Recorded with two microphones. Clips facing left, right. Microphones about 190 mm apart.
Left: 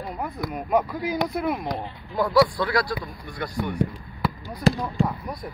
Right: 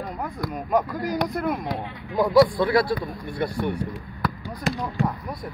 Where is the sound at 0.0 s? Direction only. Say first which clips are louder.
Even; 5° left (ahead or behind).